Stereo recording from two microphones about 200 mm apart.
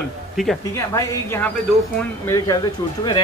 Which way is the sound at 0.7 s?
15° left (ahead or behind).